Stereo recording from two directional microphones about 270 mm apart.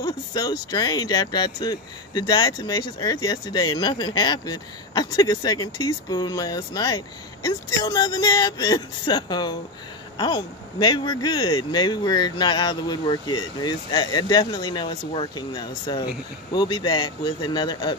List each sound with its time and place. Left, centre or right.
0.0 s speech: centre